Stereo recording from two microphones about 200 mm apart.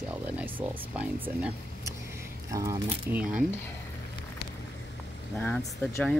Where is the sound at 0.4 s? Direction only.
10° right (ahead or behind).